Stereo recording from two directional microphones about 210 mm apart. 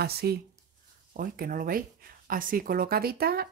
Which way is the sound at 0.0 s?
50° right (ahead or behind).